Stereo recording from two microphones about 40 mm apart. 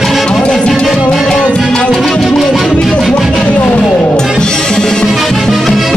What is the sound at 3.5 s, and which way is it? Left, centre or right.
Music, left.